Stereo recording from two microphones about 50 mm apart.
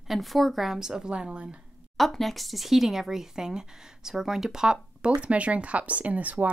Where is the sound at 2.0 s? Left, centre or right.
Centre.